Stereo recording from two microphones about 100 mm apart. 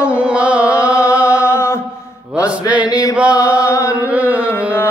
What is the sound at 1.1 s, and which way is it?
Music, 30° left (ahead or behind).